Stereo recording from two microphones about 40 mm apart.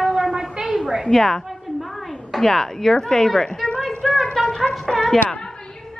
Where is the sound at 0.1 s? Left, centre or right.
Centre.